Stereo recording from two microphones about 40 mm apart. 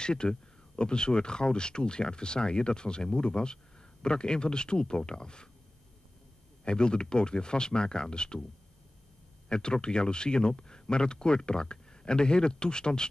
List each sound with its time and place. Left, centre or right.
0.0 s speech: left
6.6 s speech: left
9.5 s speech: left